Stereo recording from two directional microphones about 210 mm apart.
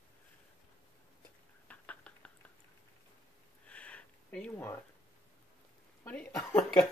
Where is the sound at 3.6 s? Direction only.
5° left (ahead or behind).